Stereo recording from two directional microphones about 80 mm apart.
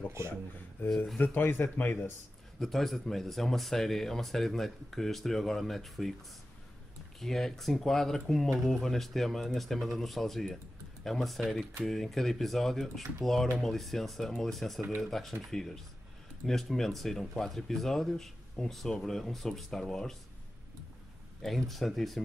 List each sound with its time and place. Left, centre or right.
0.8 s speech: centre
2.6 s speech: centre
7.2 s speech: centre
21.4 s speech: centre